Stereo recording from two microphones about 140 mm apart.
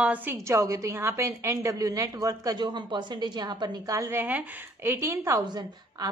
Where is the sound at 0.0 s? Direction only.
10° right (ahead or behind).